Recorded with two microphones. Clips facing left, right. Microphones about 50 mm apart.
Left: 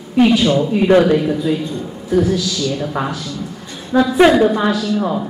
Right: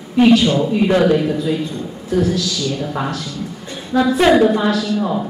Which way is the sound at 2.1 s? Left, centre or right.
Centre.